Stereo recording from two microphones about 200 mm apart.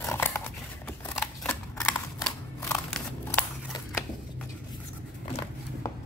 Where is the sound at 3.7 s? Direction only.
15° left (ahead or behind).